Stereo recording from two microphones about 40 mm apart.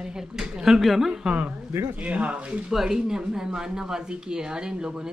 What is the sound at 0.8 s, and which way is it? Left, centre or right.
Speech, centre.